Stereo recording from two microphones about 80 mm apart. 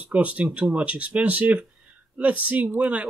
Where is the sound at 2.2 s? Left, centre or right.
Centre.